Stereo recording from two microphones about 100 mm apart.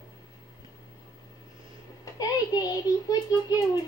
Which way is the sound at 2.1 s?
40° left (ahead or behind).